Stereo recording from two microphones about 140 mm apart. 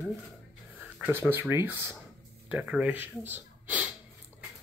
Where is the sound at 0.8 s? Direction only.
10° right (ahead or behind).